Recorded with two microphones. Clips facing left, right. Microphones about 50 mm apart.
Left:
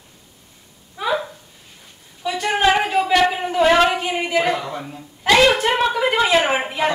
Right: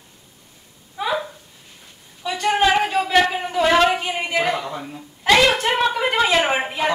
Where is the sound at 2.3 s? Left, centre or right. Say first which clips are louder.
Even; centre.